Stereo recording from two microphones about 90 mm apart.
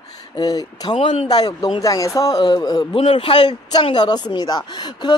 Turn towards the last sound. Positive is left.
turn(degrees=55)  # may be behind; listen again after turning